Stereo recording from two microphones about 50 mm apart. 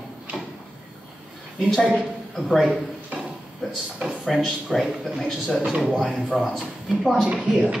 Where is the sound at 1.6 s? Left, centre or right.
Centre.